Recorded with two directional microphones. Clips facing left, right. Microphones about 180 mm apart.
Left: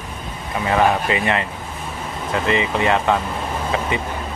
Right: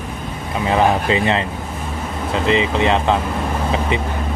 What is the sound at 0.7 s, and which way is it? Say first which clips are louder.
Speech: right 2 dB; 25° right (ahead or behind).